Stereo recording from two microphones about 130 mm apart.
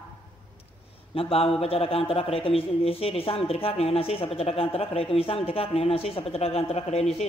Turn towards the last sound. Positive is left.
turn(degrees=55)  # may be behind; listen again after turning